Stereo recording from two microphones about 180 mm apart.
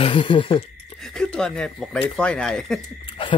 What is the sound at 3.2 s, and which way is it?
Speech, 30° left (ahead or behind).